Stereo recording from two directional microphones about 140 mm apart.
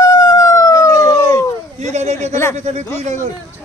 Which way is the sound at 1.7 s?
55° right (ahead or behind).